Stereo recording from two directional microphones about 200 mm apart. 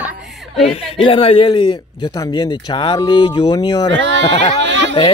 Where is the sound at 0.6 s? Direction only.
30° left (ahead or behind).